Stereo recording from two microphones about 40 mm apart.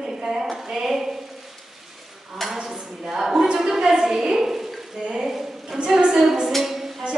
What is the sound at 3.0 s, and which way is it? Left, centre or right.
Speech, centre.